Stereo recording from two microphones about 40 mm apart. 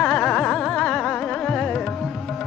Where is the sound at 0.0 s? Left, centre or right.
Left.